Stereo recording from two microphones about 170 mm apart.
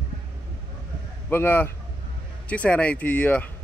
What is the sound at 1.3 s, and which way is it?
Speech, 10° left (ahead or behind).